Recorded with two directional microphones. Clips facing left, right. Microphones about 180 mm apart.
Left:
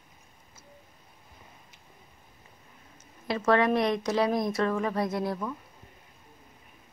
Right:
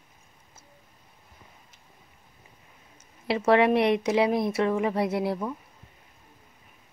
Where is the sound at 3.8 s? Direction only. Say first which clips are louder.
Right 4 dB; 25° right (ahead or behind).